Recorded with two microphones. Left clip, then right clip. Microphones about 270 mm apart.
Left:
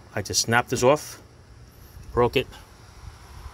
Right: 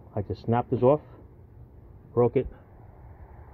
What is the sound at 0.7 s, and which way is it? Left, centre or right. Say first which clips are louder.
Speech: left 1 dB; left.